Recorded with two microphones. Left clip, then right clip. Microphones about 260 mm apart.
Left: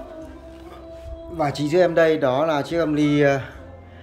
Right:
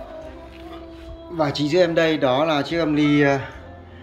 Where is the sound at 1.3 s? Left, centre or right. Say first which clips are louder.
Right 1 dB; centre.